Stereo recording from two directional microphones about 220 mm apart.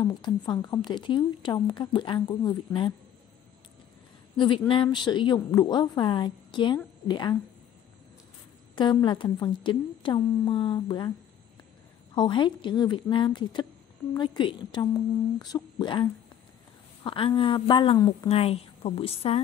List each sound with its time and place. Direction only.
0.1 s a woman's voice: 20° left (ahead or behind)
4.4 s a woman's voice: 25° left (ahead or behind)
8.7 s a woman's voice: 20° left (ahead or behind)
12.2 s a woman's voice: 20° left (ahead or behind)